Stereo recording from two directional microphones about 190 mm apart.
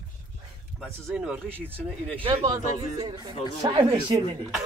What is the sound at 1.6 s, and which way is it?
Speech, 5° left (ahead or behind).